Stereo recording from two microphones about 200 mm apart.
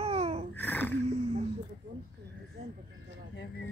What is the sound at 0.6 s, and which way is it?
Speech, 10° left (ahead or behind).